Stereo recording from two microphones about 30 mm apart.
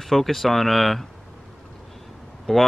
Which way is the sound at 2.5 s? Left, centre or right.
Centre.